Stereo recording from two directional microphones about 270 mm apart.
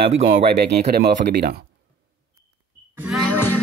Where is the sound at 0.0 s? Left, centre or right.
Right.